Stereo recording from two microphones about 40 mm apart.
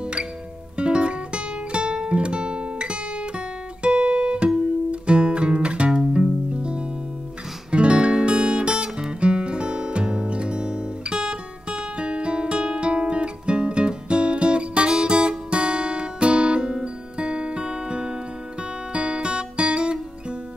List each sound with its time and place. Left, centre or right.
0.0 s music: right